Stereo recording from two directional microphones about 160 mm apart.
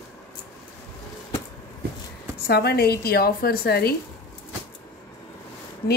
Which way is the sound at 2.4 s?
85° left.